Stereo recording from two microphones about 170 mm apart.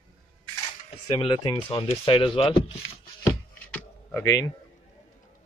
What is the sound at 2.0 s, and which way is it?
Speech, 30° left (ahead or behind).